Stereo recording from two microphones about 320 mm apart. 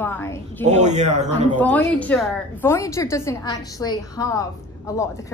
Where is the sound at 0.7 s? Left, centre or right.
Right.